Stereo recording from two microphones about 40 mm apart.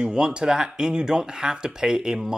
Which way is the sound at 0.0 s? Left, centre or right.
Centre.